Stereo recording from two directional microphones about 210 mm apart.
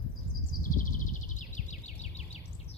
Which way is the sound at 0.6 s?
40° left (ahead or behind).